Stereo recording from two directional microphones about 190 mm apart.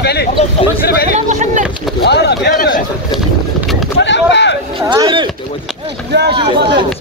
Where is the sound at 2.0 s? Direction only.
60° left (ahead or behind).